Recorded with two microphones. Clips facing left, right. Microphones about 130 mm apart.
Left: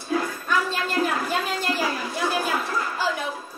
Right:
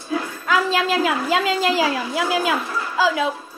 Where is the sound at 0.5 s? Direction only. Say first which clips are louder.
Right 8 dB; 90° right.